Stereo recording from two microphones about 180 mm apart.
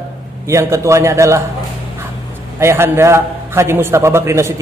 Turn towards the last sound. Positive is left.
turn(degrees=-15)  # may be behind; listen again after turning